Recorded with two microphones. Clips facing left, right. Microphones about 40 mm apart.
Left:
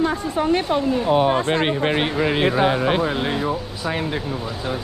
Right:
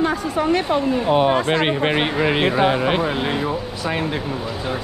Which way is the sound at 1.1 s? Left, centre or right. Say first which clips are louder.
Right 1 dB; right.